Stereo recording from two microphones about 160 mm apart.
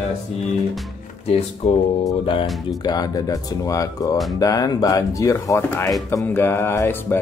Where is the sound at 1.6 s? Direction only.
40° left (ahead or behind).